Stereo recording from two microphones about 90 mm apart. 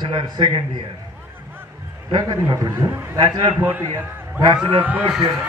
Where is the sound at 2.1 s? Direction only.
40° right (ahead or behind).